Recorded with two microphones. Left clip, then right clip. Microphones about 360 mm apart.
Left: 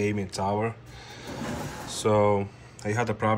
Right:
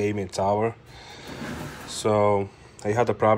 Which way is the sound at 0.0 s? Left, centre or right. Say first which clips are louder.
Right 3 dB; centre.